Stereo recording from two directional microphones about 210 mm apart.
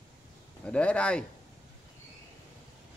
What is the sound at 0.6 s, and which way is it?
Speech, 5° left (ahead or behind).